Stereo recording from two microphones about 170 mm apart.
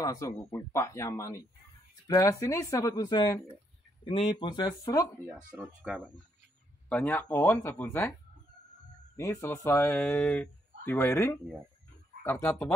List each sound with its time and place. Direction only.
0.0 s speech: 20° left (ahead or behind)
5.6 s speech: 5° right (ahead or behind)
6.9 s speech: 10° left (ahead or behind)
9.1 s speech: 15° left (ahead or behind)